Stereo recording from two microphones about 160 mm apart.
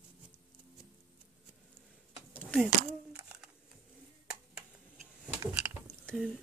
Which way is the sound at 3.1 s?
10° right (ahead or behind).